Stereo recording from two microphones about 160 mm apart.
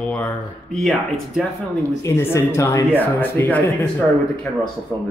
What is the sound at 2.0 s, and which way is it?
Speech, 20° left (ahead or behind).